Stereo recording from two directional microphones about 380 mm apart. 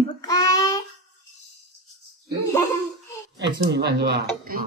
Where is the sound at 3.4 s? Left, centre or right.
Right.